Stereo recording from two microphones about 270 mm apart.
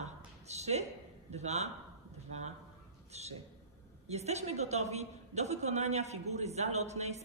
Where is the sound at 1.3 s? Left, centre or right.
Right.